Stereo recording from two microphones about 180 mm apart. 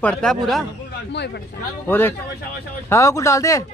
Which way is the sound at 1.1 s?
70° left (ahead or behind).